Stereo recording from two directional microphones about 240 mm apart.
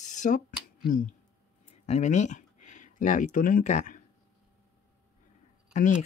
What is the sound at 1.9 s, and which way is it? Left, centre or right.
Speech, left.